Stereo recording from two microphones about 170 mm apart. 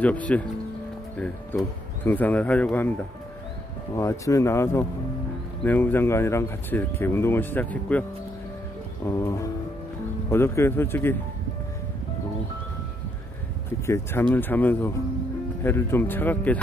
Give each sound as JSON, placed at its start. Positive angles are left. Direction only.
{"t": 0.0, "sound": "speech", "side_deg": 10}
{"t": 3.9, "sound": "speech", "side_deg": 20}
{"t": 9.0, "sound": "speech", "side_deg": 15}
{"t": 13.8, "sound": "speech", "side_deg": 15}